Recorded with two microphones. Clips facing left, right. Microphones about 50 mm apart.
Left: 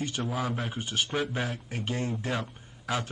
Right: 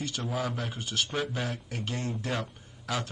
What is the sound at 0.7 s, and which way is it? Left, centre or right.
Speech, left.